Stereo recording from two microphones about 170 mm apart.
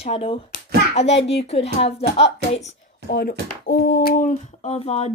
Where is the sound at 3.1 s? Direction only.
60° left (ahead or behind); by 5.1 s 40° left (ahead or behind).